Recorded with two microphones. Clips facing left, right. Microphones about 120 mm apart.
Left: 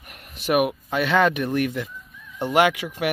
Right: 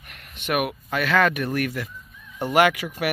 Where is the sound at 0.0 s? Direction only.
10° left (ahead or behind).